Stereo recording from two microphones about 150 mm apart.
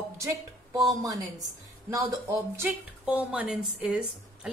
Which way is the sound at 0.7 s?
25° right (ahead or behind).